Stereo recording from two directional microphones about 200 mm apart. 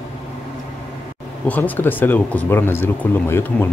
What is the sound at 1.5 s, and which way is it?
Speech, 10° left (ahead or behind).